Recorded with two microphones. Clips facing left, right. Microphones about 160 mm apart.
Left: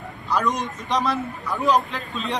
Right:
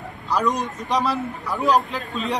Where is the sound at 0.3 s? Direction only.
Centre (ahead or behind).